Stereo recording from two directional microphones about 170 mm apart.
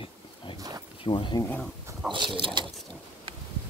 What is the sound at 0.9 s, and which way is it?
Speech, 30° left (ahead or behind).